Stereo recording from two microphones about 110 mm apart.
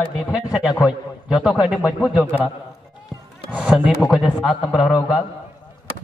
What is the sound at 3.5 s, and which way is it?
A man's voice, 5° right (ahead or behind).